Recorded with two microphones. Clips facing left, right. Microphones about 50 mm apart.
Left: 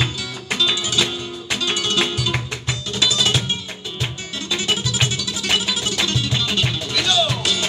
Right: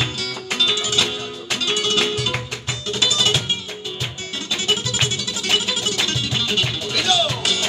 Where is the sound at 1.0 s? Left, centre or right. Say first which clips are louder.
Even; left.